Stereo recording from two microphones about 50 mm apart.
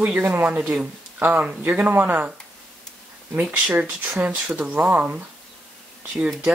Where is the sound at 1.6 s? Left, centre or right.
Right.